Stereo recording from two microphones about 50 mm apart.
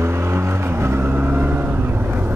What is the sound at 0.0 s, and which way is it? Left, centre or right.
Vehicle, right.